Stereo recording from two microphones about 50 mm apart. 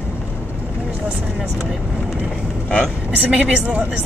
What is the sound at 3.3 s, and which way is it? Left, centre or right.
Speech, right.